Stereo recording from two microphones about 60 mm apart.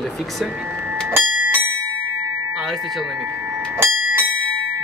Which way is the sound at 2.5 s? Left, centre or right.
Centre.